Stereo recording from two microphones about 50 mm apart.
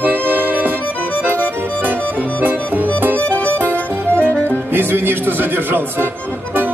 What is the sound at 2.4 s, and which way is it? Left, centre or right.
Music, right.